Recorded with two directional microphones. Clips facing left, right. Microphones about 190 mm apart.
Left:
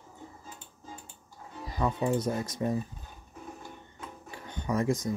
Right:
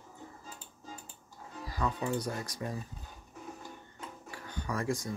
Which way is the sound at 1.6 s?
20° left (ahead or behind).